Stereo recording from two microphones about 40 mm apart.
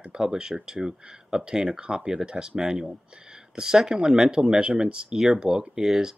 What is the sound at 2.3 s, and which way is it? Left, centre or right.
Speech, right.